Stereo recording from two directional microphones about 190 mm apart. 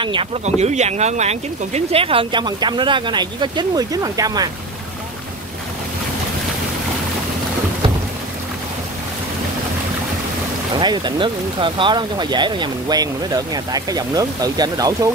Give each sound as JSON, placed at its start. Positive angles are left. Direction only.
{"t": 0.0, "sound": "speech", "side_deg": -25}
{"t": 10.8, "sound": "speech", "side_deg": -25}